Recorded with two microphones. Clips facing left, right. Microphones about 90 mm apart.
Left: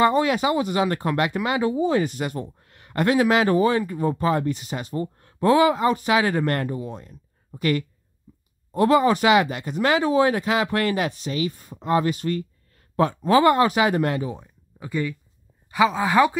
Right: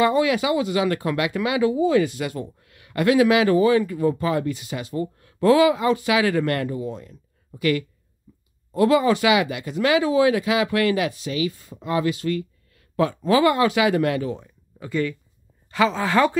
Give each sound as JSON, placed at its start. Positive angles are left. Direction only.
{"t": 0.0, "sound": "speech", "side_deg": 35}
{"t": 8.7, "sound": "speech", "side_deg": 35}
{"t": 11.5, "sound": "speech", "side_deg": 20}
{"t": 11.8, "sound": "speech", "side_deg": 35}
{"t": 14.2, "sound": "speech", "side_deg": 15}